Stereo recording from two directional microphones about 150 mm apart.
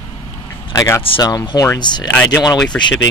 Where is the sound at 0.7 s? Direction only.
25° left (ahead or behind).